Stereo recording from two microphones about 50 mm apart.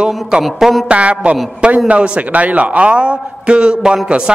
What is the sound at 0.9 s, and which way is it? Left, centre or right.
A man's voice, right.